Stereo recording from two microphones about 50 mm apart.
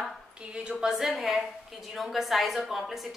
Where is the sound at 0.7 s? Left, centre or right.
Centre.